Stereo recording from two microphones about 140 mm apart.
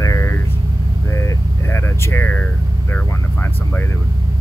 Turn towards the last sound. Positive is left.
turn(degrees=15)  # may be behind; listen again after turning